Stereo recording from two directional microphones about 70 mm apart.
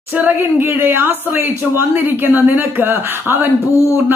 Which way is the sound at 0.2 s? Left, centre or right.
Right.